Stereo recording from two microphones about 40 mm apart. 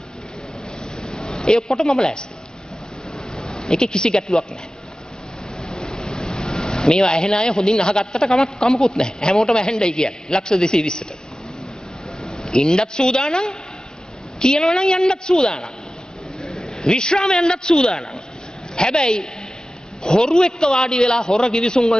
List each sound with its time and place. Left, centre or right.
1.0 s a sound: centre
1.7 s speech: centre
3.3 s a sound: centre
4.2 s speech: centre
5.6 s vehicle: centre
8.3 s speech: centre
12.3 s a man's voice: centre